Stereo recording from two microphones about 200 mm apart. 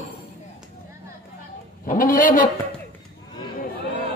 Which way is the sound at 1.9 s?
45° left (ahead or behind).